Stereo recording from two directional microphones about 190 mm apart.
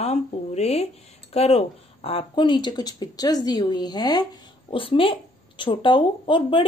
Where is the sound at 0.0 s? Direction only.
35° left (ahead or behind).